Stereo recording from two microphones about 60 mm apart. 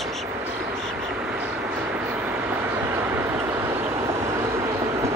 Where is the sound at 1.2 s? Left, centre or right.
Right.